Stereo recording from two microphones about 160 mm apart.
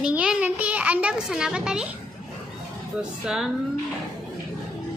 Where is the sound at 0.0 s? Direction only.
5° right (ahead or behind).